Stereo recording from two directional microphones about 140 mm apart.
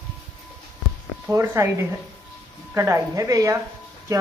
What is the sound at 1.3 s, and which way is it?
A woman's voice, 20° right (ahead or behind).